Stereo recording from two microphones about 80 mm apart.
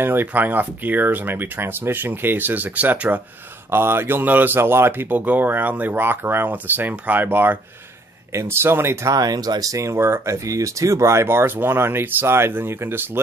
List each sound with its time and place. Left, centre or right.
0.0 s speech: right
9.1 s speech: right